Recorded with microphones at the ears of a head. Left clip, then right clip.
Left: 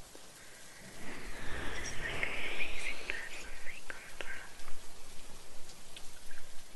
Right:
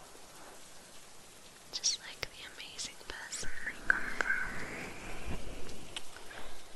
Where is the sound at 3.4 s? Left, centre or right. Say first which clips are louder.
Right 6 dB; right.